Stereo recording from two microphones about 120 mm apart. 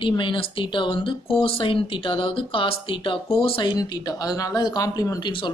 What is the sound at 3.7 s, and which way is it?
A woman's voice, 35° left (ahead or behind).